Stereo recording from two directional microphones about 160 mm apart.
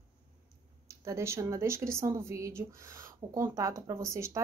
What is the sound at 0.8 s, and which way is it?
Speech, 20° right (ahead or behind).